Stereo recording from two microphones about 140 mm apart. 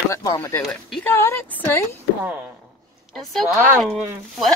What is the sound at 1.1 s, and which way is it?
Speech, 15° left (ahead or behind).